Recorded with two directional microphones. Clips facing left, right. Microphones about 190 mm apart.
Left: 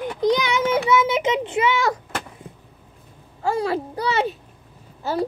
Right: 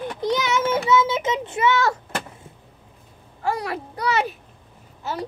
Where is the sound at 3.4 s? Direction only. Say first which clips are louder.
Left 4 dB; 30° left (ahead or behind).